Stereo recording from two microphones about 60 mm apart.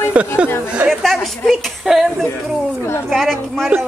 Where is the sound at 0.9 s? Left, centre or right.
Centre.